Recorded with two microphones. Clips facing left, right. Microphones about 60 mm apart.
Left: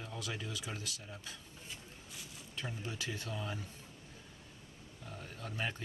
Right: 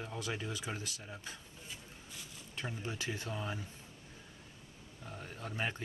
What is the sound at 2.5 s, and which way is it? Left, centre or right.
Speech, right.